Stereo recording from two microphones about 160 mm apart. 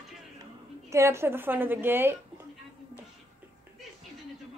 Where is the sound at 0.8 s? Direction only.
15° right (ahead or behind).